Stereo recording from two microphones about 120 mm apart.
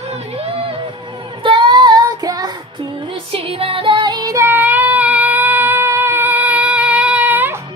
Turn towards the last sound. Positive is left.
turn(degrees=-15)  # may be behind; listen again after turning